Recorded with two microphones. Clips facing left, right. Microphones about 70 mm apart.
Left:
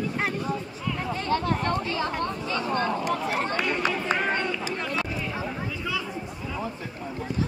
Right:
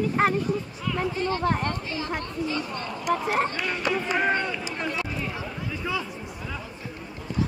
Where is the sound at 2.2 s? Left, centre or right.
Left.